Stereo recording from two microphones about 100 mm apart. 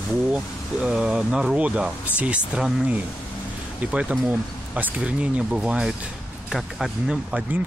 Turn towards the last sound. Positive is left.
turn(degrees=-10)  # may be behind; listen again after turning